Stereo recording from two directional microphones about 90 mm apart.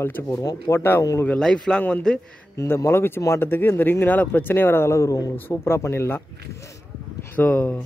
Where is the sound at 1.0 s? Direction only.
35° left (ahead or behind).